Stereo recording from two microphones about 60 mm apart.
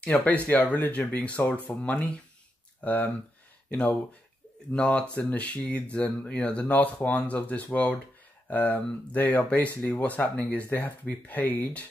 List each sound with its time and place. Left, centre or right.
0.0 s speech: left
4.7 s speech: centre